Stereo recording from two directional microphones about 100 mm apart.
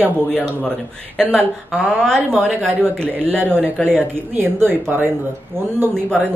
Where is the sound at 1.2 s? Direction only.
15° right (ahead or behind).